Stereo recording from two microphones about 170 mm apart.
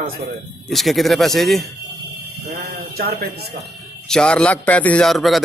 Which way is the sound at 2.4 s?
70° right (ahead or behind).